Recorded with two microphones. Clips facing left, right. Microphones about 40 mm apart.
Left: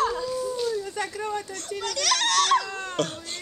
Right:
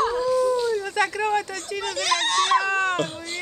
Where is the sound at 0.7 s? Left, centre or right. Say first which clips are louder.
Right 6 dB; right.